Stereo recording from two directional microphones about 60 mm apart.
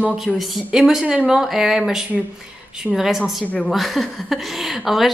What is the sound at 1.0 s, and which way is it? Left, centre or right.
Speech, centre.